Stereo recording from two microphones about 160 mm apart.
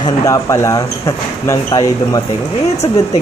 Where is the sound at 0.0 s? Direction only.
20° left (ahead or behind).